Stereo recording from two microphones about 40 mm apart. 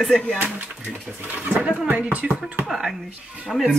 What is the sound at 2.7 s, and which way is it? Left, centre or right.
Speech, centre.